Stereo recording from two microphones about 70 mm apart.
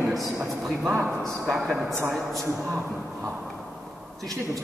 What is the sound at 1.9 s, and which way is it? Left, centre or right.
Speech, right.